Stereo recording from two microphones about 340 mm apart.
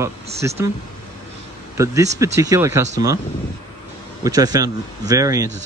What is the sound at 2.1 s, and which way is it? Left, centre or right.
Speech, centre.